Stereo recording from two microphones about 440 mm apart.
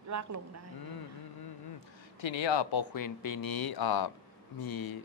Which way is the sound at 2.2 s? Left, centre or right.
Left.